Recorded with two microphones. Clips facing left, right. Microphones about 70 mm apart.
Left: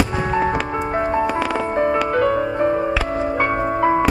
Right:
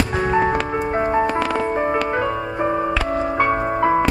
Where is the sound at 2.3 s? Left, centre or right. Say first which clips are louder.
Left 3 dB; centre.